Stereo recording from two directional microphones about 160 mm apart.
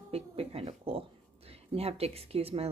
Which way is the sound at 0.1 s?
40° right (ahead or behind).